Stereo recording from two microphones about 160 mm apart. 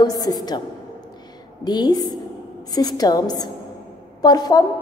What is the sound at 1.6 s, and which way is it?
A woman's voice, 25° left (ahead or behind).